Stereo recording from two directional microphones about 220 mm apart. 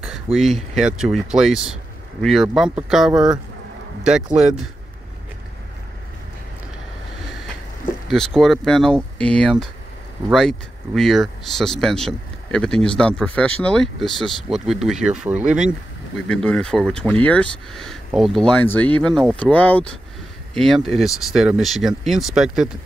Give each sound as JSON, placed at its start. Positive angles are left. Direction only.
{"t": 0.0, "sound": "speech", "side_deg": 0}
{"t": 8.1, "sound": "speech", "side_deg": 0}
{"t": 11.0, "sound": "speech", "side_deg": 0}